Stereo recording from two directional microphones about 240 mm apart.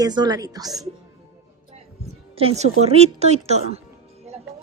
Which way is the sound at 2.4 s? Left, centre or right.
Right.